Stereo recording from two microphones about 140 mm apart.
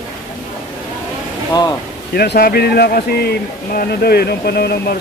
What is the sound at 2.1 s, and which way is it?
Speech, 90° left.